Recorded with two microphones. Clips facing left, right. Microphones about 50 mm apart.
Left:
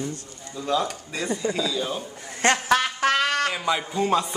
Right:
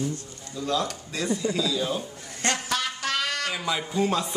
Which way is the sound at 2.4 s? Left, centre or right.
Left.